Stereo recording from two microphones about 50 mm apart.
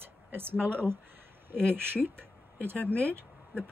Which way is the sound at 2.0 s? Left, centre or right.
Right.